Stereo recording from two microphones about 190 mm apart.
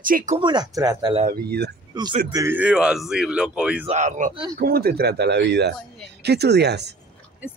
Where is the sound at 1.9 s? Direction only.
20° right (ahead or behind); by 3.8 s 5° right (ahead or behind).